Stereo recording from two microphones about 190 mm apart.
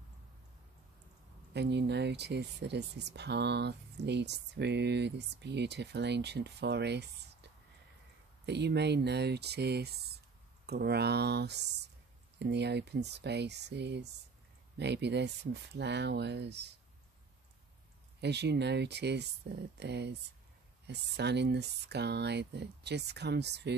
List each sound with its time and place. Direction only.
1.5 s speech: 65° right (ahead or behind)
8.5 s speech: 60° right (ahead or behind)
18.2 s speech: 65° right (ahead or behind)